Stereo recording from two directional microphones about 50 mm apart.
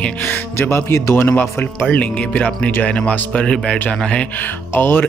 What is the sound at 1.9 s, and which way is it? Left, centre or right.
Speech, left.